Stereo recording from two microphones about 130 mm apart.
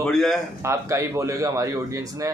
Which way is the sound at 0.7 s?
25° right (ahead or behind).